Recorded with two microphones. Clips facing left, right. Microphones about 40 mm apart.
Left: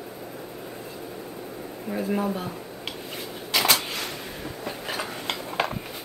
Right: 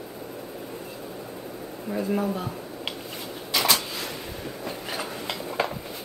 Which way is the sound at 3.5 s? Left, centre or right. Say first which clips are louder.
Left 1 dB; left.